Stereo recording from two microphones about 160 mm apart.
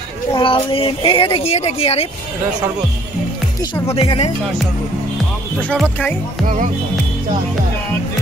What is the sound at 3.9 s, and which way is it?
Speech, 35° left (ahead or behind).